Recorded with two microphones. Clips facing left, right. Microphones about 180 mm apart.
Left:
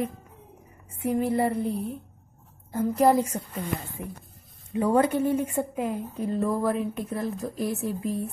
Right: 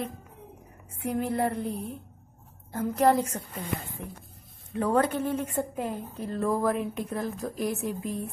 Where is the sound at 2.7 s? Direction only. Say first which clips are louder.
Left 2 dB; 10° left (ahead or behind).